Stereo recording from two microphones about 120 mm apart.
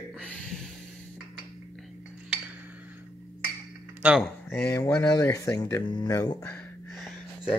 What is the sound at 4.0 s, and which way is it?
Speech, 10° right (ahead or behind).